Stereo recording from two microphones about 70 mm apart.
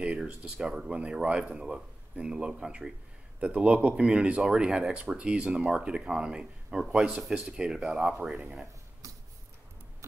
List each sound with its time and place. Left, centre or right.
0.0 s speech: centre